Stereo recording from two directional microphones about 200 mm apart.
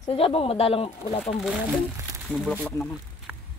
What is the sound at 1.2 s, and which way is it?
Speech, 5° right (ahead or behind).